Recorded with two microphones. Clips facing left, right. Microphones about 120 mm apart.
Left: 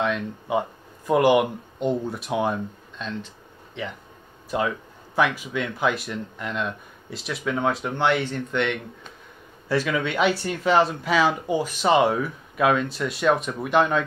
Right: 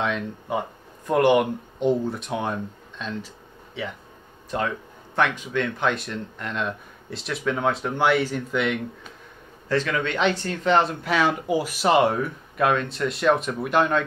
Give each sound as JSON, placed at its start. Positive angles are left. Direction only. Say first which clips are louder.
{"t": 0.0, "sound": "speech", "louder": "left 1 dB", "side_deg": 0}
{"t": 9.7, "sound": "speech", "louder": "even", "side_deg": 10}